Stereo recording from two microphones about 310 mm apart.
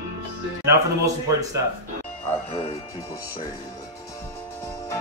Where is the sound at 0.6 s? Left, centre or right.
Centre.